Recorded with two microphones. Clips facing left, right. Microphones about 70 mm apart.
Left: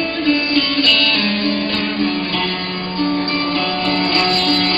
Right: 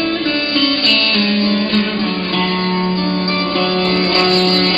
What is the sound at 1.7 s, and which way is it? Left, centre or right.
Music, right.